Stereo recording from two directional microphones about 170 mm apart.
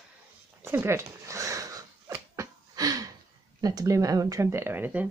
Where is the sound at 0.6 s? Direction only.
15° right (ahead or behind).